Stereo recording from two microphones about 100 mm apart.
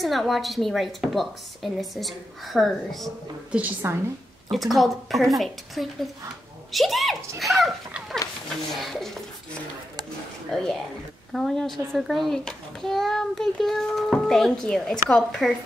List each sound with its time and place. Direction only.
0.0 s a child's voice: centre (ahead or behind)
3.8 s a woman's voice: 25° right (ahead or behind)
4.5 s a child's voice: centre (ahead or behind)
8.7 s a child's voice: centre (ahead or behind)
10.5 s a child's voice: 5° left (ahead or behind)